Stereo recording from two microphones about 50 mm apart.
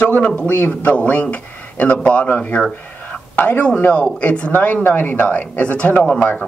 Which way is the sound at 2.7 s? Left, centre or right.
Left.